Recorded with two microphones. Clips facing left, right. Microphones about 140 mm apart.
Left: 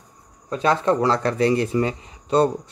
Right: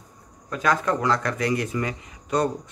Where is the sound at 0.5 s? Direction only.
30° left (ahead or behind).